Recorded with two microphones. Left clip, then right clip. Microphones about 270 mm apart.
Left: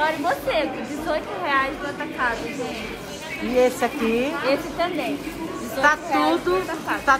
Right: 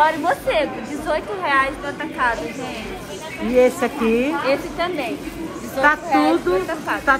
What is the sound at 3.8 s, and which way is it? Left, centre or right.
Speech, centre.